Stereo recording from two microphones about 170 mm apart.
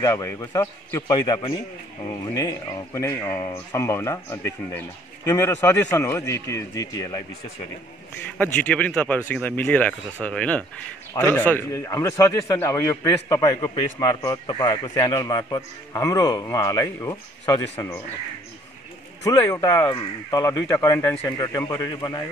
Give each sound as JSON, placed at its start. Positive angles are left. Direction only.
{"t": 0.0, "sound": "a man's voice", "side_deg": 15}
{"t": 2.9, "sound": "speech", "side_deg": 15}
{"t": 8.4, "sound": "a man's voice", "side_deg": 10}
{"t": 19.2, "sound": "a man's voice", "side_deg": 20}